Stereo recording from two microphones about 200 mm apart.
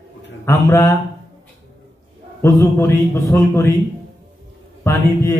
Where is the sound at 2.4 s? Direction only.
15° left (ahead or behind).